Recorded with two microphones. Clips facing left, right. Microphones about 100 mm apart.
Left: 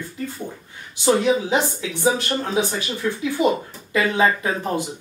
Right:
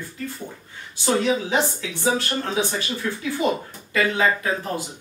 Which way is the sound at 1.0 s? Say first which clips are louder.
Left 3 dB; 15° left (ahead or behind).